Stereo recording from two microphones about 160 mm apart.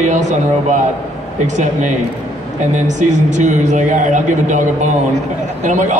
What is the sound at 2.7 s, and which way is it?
A woman's voice, 45° right (ahead or behind).